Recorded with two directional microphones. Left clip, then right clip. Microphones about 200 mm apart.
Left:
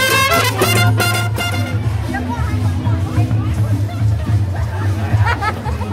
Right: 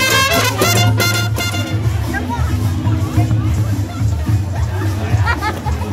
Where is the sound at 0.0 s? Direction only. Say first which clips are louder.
Even; 55° left (ahead or behind).